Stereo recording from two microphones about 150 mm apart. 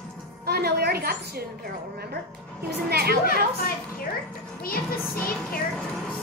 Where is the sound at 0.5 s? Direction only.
90° right.